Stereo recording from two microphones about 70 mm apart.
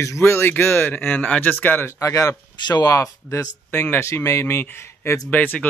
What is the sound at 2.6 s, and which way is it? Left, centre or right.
Speech, left.